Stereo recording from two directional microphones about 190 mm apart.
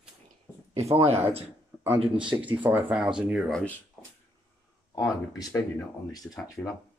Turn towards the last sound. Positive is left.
turn(degrees=5)  # may be behind; listen again after turning